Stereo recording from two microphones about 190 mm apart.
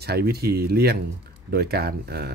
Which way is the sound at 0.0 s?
55° right (ahead or behind).